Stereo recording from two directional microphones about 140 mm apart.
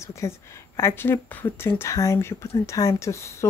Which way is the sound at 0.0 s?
20° left (ahead or behind).